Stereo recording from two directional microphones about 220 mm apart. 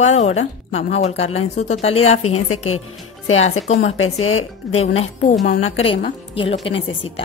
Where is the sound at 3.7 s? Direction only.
30° left (ahead or behind).